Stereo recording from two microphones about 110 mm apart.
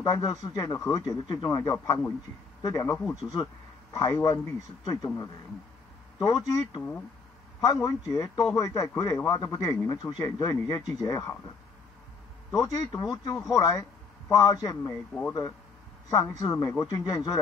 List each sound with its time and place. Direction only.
0.0 s speech: 35° left (ahead or behind)
3.2 s speech: centre (ahead or behind)
3.9 s speech: 30° left (ahead or behind)
7.8 s speech: 30° left (ahead or behind)
12.4 s speech: 35° left (ahead or behind)
16.1 s speech: 35° left (ahead or behind)